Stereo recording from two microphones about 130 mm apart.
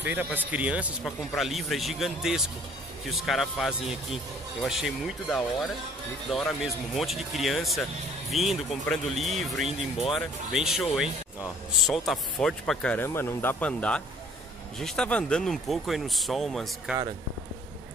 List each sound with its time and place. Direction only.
0.0 s speech: 15° right (ahead or behind)
12.1 s speech: 5° left (ahead or behind)